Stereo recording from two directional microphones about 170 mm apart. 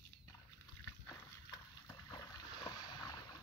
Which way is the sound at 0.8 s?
20° left (ahead or behind).